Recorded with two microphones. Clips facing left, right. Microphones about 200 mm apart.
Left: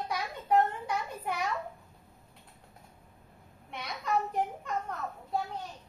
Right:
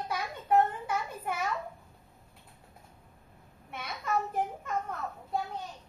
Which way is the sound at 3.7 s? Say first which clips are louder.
Left 1 dB; 5° right (ahead or behind).